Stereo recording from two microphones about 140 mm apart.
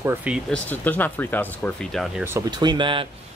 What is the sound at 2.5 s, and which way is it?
Speech, 30° right (ahead or behind).